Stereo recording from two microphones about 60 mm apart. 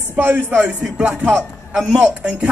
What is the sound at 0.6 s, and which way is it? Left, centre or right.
Music, centre.